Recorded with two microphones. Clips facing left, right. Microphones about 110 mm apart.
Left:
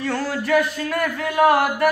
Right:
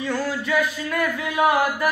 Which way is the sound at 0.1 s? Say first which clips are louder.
Left 3 dB; 60° left (ahead or behind).